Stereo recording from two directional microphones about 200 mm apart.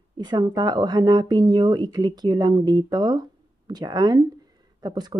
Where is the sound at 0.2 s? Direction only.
20° right (ahead or behind).